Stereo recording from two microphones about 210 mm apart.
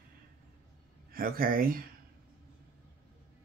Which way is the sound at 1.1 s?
45° right (ahead or behind).